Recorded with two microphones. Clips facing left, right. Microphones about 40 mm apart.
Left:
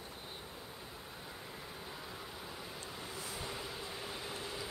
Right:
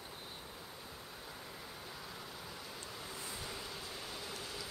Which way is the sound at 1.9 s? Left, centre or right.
Centre.